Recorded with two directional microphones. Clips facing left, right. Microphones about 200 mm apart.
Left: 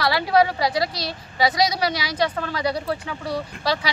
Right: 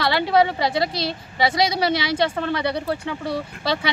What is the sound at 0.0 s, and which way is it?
Speech, 25° right (ahead or behind).